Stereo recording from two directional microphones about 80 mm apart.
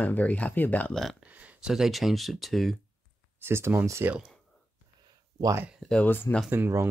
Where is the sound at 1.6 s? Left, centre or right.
Centre.